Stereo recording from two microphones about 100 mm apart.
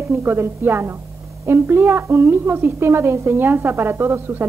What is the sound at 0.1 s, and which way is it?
A woman's voice, 20° right (ahead or behind).